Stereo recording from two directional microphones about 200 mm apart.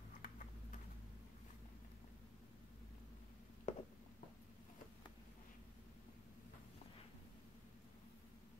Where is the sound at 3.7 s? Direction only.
40° left (ahead or behind).